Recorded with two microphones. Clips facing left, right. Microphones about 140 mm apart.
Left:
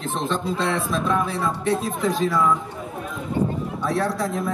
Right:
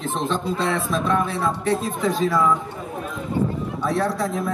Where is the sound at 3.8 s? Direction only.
Centre (ahead or behind).